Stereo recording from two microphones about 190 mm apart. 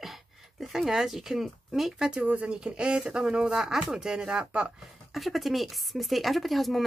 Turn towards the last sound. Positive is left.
turn(degrees=0)  # may be behind; listen again after turning